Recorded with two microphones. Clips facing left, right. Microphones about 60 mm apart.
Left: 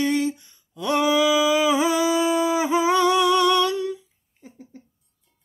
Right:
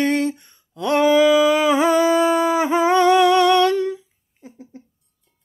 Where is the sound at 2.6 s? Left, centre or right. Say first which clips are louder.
Right 3 dB; right.